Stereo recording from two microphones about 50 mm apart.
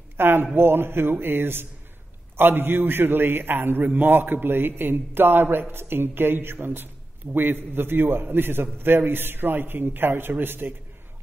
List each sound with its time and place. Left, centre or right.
0.2 s a man's voice: right